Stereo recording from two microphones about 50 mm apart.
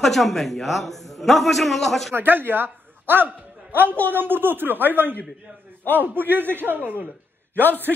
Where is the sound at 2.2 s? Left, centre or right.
Right.